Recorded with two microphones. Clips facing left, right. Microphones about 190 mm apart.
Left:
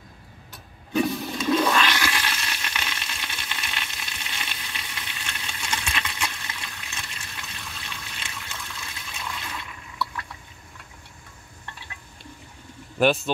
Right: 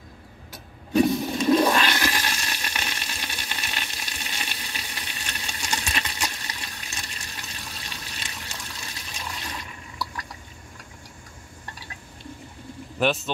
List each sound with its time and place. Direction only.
1.4 s toilet flush: 35° right (ahead or behind)
7.4 s water: 40° right (ahead or behind)
13.0 s speech: centre (ahead or behind)